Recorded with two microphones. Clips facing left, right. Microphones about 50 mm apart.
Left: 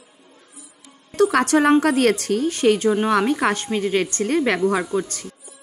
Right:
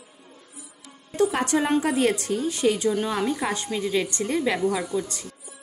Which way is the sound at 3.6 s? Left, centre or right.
Left.